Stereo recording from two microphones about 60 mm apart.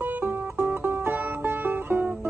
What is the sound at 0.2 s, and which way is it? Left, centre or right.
Music, right.